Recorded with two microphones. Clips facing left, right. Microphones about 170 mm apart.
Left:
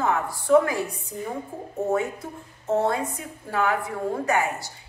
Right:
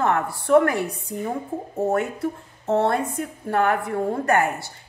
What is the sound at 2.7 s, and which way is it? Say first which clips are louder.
A woman's voice: right 2 dB; 65° right (ahead or behind).